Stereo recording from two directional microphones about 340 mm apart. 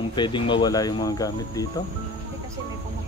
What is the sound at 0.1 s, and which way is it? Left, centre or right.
Cricket, centre.